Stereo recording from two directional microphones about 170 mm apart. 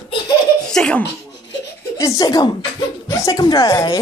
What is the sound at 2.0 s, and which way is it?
Speech, 20° left (ahead or behind).